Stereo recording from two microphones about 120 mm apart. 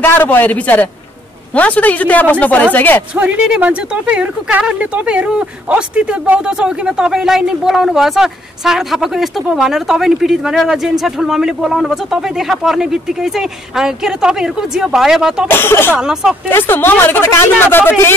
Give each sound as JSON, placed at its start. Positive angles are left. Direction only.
{"t": 0.0, "sound": "speech", "side_deg": 15}
{"t": 3.2, "sound": "speech", "side_deg": -10}
{"t": 15.4, "sound": "speech", "side_deg": 20}
{"t": 16.0, "sound": "speech", "side_deg": -5}
{"t": 16.4, "sound": "speech", "side_deg": 15}